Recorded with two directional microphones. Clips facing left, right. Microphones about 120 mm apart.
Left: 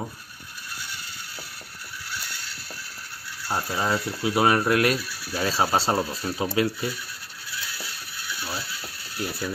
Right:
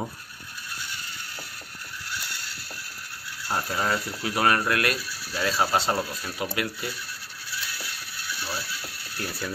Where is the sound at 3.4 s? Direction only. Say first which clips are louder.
Left 1 dB; 5° left (ahead or behind).